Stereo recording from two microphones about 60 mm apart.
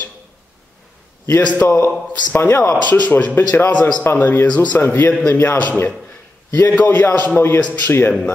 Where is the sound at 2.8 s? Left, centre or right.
Left.